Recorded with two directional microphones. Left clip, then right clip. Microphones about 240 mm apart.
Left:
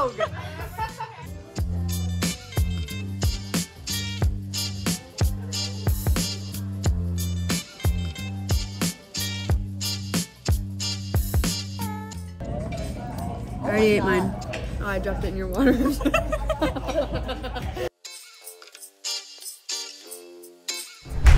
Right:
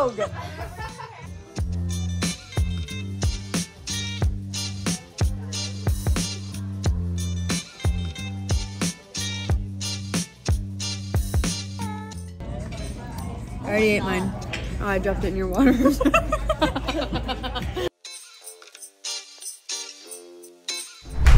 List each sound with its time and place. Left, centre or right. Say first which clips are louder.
1.5 s music: even; centre
13.7 s speech: left 1 dB; centre
16.1 s music: right 3 dB; centre
16.5 s music: right 1 dB; right
19.0 s music: left 1 dB; centre